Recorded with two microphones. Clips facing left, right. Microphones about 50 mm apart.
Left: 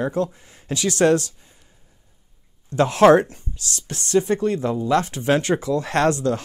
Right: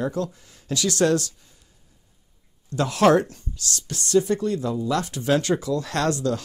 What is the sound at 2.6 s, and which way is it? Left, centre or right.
Speech, left.